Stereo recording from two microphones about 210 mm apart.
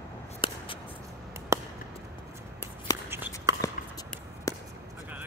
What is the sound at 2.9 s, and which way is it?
Writing, 15° left (ahead or behind).